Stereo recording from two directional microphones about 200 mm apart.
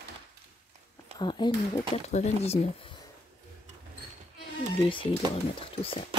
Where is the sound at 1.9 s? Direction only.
35° left (ahead or behind).